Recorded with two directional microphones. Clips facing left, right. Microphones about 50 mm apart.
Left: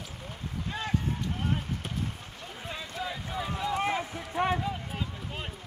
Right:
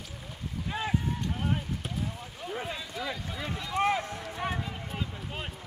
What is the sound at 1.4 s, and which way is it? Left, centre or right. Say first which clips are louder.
Basketball bounce: even; centre.